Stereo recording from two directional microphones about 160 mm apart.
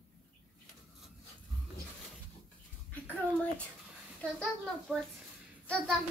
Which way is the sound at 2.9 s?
10° left (ahead or behind).